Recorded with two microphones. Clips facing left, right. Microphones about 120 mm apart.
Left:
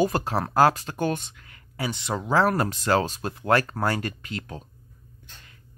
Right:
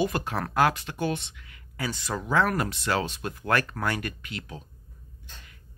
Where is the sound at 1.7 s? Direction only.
25° left (ahead or behind); by 3.3 s 40° left (ahead or behind).